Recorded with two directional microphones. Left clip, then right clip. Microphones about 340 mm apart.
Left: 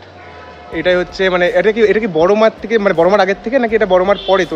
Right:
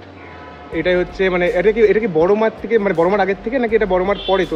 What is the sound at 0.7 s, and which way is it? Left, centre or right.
Speech, left.